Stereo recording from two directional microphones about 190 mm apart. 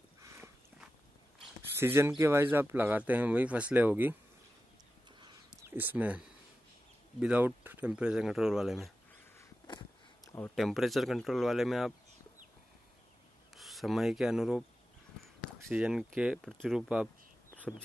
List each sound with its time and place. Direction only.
1.8 s speech: 10° right (ahead or behind)
5.6 s speech: 10° right (ahead or behind)
9.7 s a sound: 25° left (ahead or behind)
10.5 s speech: centre (ahead or behind)
13.6 s speech: centre (ahead or behind)
15.7 s speech: 5° right (ahead or behind)